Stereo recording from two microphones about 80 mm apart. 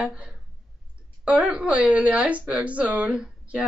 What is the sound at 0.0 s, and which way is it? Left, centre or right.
A woman's voice, centre.